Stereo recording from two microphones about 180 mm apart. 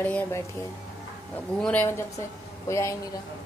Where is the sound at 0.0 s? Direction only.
10° left (ahead or behind).